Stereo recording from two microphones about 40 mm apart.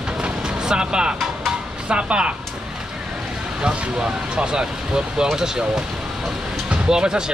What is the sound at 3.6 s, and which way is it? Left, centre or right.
Speech, right.